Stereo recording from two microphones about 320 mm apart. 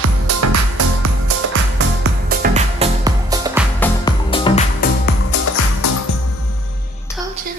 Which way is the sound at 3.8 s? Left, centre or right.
Centre.